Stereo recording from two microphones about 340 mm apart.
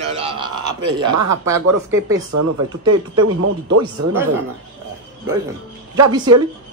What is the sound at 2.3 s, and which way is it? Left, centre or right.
Speech, right.